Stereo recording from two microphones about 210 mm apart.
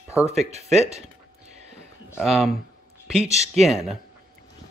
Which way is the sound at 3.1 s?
30° right (ahead or behind).